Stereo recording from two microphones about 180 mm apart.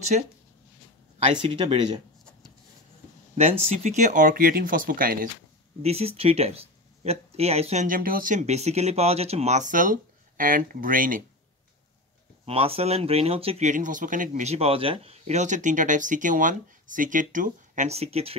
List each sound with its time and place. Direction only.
0.1 s speech: 45° right (ahead or behind)
1.2 s speech: 30° right (ahead or behind)
3.3 s speech: 35° right (ahead or behind)
5.8 s speech: 35° right (ahead or behind)
12.4 s speech: 35° right (ahead or behind)